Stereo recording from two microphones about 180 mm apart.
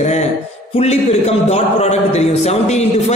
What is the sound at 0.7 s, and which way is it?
A man's voice, 40° left (ahead or behind).